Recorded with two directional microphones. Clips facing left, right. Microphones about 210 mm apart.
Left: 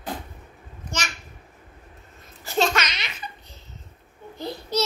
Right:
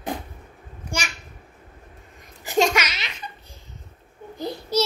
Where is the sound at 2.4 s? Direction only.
15° right (ahead or behind).